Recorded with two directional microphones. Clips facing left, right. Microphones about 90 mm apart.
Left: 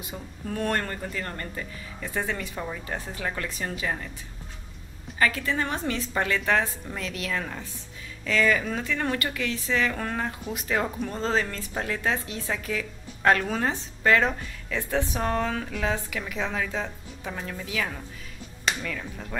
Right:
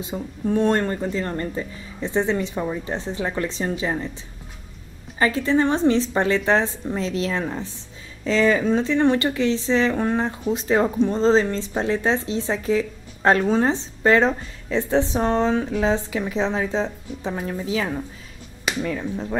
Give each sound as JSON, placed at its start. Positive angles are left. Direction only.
{"t": 0.0, "sound": "speech", "side_deg": -25}
{"t": 5.2, "sound": "speech", "side_deg": -30}